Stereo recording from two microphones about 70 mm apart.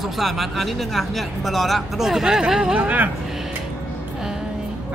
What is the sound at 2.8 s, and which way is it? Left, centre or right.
Speech, right.